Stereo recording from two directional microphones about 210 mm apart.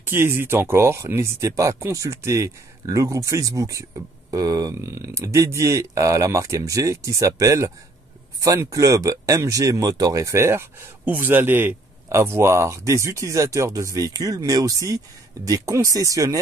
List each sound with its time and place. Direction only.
0.0 s speech: 10° right (ahead or behind)